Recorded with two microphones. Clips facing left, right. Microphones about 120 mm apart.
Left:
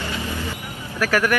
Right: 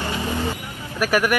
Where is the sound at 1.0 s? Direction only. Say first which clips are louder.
Right 1 dB; 15° right (ahead or behind).